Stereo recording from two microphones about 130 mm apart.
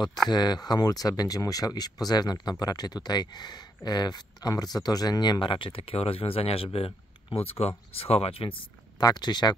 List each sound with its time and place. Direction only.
0.3 s speech: 35° left (ahead or behind)
9.0 s speech: 35° left (ahead or behind)